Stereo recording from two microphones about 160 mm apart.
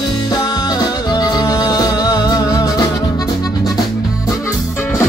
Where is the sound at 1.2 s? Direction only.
25° left (ahead or behind).